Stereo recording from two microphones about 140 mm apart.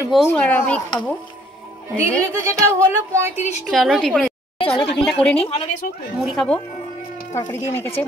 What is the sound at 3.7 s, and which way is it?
Speech, centre (ahead or behind).